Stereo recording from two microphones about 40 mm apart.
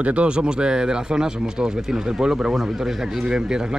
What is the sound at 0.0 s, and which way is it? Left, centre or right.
A man's voice, right.